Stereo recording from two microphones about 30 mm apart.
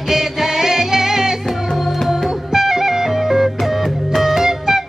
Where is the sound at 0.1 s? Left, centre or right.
Centre.